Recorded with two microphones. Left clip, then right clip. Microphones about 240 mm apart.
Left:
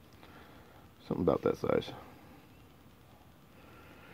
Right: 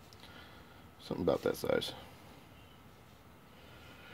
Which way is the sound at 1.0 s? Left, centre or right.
Left.